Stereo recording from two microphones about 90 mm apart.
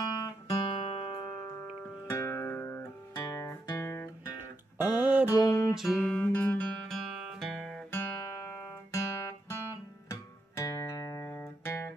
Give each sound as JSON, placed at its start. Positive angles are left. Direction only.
{"t": 0.0, "sound": "guitar", "side_deg": 45}
{"t": 0.6, "sound": "music", "side_deg": 70}
{"t": 2.0, "sound": "music", "side_deg": 30}
{"t": 3.2, "sound": "guitar", "side_deg": 40}
{"t": 3.8, "sound": "guitar", "side_deg": 30}
{"t": 4.4, "sound": "music", "side_deg": -20}
{"t": 5.3, "sound": "music", "side_deg": 40}
{"t": 6.0, "sound": "music", "side_deg": 15}
{"t": 6.9, "sound": "guitar", "side_deg": 0}
{"t": 7.9, "sound": "guitar", "side_deg": 30}